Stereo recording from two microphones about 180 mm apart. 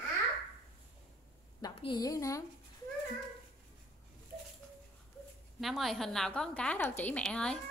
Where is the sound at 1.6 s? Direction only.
25° left (ahead or behind).